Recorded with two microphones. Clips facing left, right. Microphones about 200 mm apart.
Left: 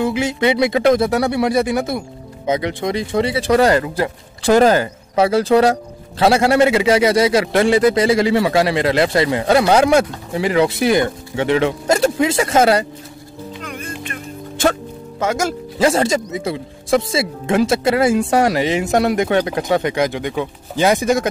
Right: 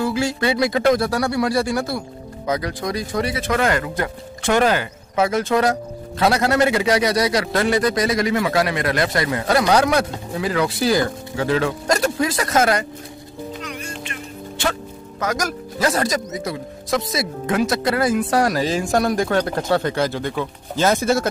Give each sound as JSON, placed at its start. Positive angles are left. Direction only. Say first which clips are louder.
{"t": 0.0, "sound": "speech", "louder": "left 3 dB", "side_deg": 20}
{"t": 13.6, "sound": "music", "louder": "left 2 dB", "side_deg": 50}
{"t": 14.6, "sound": "speech", "louder": "left 7 dB", "side_deg": 45}
{"t": 15.1, "sound": "speech", "louder": "left 4 dB", "side_deg": 25}